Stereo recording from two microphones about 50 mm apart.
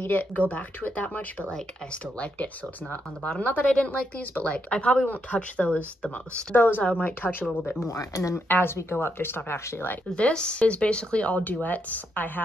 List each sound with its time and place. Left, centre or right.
0.0 s speech: left
3.7 s speech: left
4.2 s speech: left
4.5 s speech: left
6.5 s speech: left
6.8 s speech: left
7.8 s speech: left
8.5 s speech: left
10.1 s speech: left